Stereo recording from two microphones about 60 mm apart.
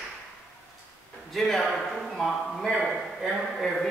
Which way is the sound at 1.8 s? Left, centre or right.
Centre.